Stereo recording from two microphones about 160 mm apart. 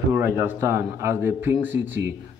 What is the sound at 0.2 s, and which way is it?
Speech, 15° right (ahead or behind).